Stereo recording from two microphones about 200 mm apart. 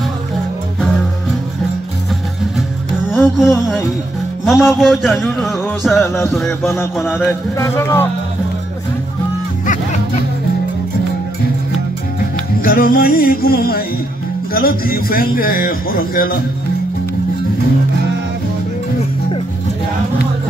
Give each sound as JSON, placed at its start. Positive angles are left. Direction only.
{"t": 3.1, "sound": "music", "side_deg": 0}
{"t": 4.5, "sound": "a man's voice", "side_deg": 0}
{"t": 6.0, "sound": "music", "side_deg": 15}
{"t": 6.3, "sound": "a man's voice", "side_deg": 0}
{"t": 7.5, "sound": "music", "side_deg": 15}
{"t": 12.6, "sound": "music", "side_deg": 45}